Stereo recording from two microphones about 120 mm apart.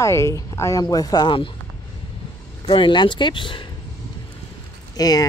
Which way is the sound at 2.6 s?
40° left (ahead or behind).